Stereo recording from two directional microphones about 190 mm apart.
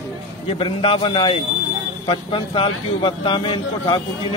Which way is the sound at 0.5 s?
25° left (ahead or behind).